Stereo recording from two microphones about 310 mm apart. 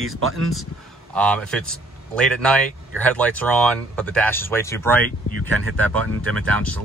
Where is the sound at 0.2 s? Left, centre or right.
Right.